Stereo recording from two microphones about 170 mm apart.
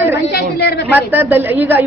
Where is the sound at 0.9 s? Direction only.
10° right (ahead or behind).